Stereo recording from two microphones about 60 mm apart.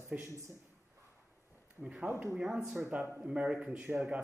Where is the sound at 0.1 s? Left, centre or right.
Right.